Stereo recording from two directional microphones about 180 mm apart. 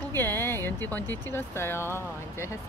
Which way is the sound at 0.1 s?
10° left (ahead or behind).